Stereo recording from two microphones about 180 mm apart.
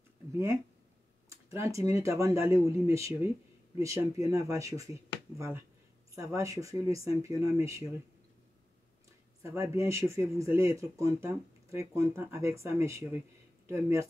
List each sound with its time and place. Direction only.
0.3 s speech: 15° right (ahead or behind)
6.1 s speech: 15° right (ahead or behind)
9.4 s speech: 15° right (ahead or behind)